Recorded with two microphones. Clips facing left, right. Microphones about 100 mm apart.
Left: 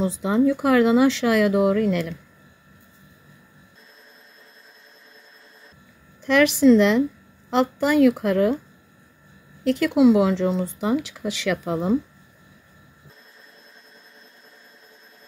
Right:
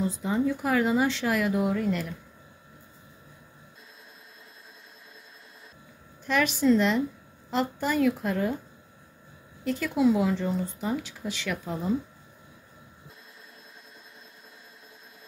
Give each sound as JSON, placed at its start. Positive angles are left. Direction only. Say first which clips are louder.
{"t": 0.0, "sound": "speech", "louder": "left 7 dB", "side_deg": 90}
{"t": 6.2, "sound": "speech", "louder": "left 8 dB", "side_deg": 90}
{"t": 9.7, "sound": "speech", "louder": "left 7 dB", "side_deg": 90}